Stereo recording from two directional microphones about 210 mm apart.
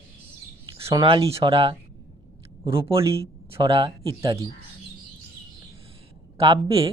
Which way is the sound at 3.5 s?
25° right (ahead or behind).